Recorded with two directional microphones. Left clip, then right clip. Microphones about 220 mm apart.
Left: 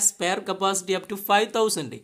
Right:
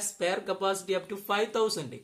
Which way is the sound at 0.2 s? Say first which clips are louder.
Left 2 dB; 45° left (ahead or behind).